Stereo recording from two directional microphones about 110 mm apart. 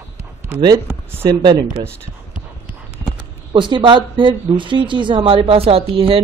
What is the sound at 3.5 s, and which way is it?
Speech, 50° right (ahead or behind).